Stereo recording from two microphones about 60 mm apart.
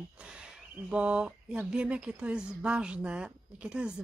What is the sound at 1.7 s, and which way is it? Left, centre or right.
Speech, centre.